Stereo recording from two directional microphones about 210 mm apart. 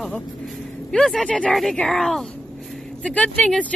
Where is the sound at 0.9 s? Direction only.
Centre (ahead or behind).